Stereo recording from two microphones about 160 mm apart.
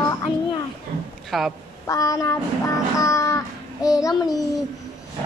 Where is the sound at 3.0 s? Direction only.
20° left (ahead or behind).